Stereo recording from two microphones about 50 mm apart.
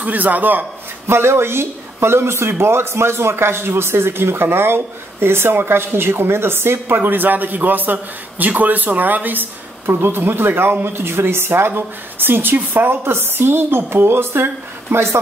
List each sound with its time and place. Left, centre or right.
0.0 s a man's voice: right
1.0 s speech: right